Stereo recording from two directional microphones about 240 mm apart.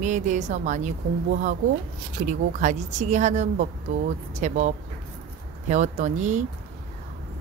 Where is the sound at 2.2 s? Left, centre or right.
Right.